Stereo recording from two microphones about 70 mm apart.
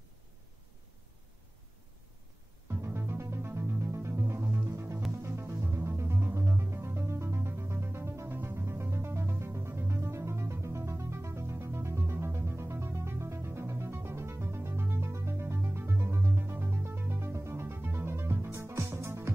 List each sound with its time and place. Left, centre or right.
2.7 s music: right